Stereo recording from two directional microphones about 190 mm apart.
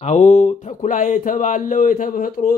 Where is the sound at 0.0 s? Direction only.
40° left (ahead or behind).